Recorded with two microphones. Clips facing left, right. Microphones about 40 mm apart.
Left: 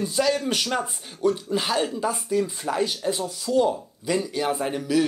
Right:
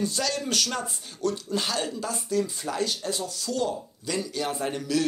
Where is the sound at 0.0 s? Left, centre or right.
Centre.